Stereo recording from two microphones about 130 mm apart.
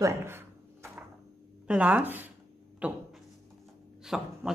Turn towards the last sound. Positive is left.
turn(degrees=-5)  # may be behind; listen again after turning